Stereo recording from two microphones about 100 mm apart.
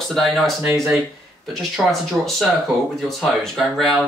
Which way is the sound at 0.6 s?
30° right (ahead or behind).